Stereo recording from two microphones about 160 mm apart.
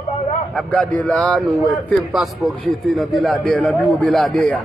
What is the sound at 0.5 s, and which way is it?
A man's voice, 10° left (ahead or behind).